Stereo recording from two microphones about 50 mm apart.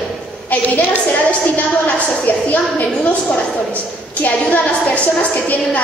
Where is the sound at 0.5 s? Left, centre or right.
Left.